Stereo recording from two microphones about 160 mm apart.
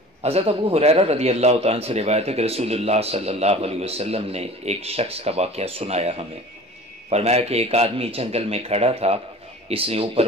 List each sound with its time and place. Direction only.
0.2 s a man's voice: 40° right (ahead or behind)